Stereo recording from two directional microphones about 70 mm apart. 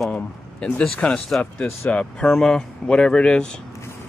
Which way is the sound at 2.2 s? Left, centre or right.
Centre.